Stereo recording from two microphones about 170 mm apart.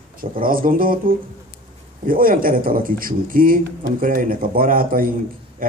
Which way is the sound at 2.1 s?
55° right (ahead or behind).